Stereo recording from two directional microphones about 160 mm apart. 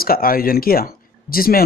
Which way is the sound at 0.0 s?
65° left (ahead or behind).